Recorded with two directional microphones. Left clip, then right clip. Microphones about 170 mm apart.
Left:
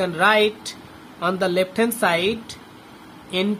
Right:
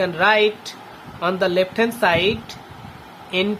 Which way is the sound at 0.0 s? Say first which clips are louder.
Right 1 dB; 10° left (ahead or behind).